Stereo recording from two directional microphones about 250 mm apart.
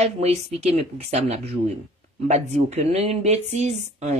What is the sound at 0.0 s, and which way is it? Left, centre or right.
A woman's voice, right.